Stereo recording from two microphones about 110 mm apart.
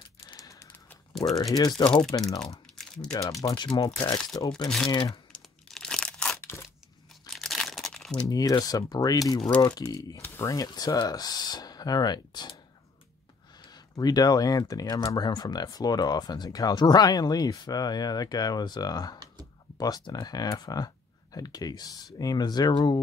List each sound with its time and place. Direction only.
0.4 s typing: 30° left (ahead or behind)
1.3 s speech: 35° left (ahead or behind)
2.6 s crumpling: 5° left (ahead or behind)
3.1 s speech: 30° left (ahead or behind)
3.7 s speech: 45° left (ahead or behind)
5.3 s tearing: 5° left (ahead or behind)
7.2 s crumpling: 5° left (ahead or behind)
8.3 s speech: 35° left (ahead or behind)
13.6 s a sound: 40° left (ahead or behind)
14.7 s speech: 35° left (ahead or behind)